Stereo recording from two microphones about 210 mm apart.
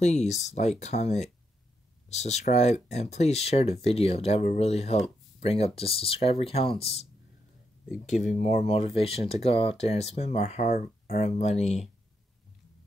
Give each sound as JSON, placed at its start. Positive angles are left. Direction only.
{"t": 0.0, "sound": "speech", "side_deg": 35}
{"t": 8.4, "sound": "speech", "side_deg": 30}